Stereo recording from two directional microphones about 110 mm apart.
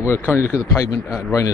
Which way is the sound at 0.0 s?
25° left (ahead or behind).